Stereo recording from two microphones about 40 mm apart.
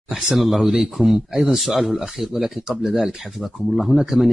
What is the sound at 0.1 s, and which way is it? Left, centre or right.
Speech, centre.